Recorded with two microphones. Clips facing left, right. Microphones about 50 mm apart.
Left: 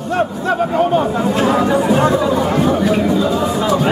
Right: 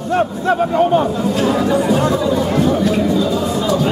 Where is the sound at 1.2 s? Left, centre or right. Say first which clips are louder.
Left 2 dB; left.